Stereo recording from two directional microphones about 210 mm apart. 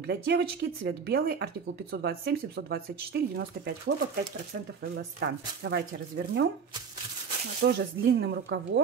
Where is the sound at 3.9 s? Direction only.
50° right (ahead or behind).